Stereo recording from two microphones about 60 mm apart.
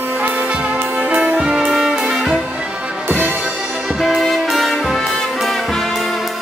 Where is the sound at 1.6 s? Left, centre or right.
Centre.